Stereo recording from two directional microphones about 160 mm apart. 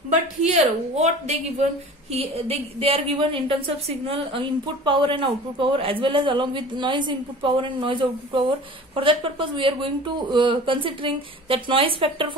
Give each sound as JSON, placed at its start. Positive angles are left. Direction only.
{"t": 0.4, "sound": "a woman's voice", "side_deg": -45}